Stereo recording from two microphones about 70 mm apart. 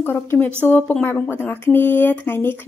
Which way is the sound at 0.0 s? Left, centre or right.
Left.